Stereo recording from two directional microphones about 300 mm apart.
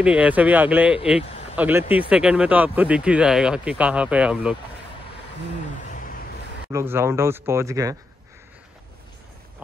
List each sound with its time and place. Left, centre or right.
0.0 s speech: centre
5.9 s a sound: left
6.7 s speech: centre